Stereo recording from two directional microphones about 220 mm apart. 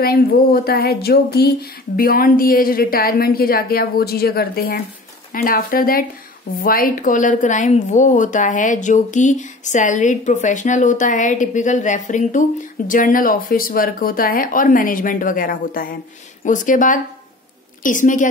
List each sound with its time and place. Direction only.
0.0 s a woman's voice: 45° left (ahead or behind)